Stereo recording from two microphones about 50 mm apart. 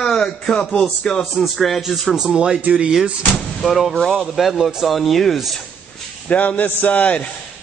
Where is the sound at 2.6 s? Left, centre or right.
Right.